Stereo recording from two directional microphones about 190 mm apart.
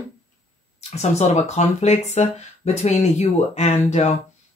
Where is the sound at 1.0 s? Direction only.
35° left (ahead or behind).